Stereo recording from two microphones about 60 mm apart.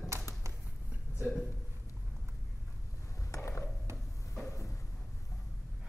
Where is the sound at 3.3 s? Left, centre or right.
Left.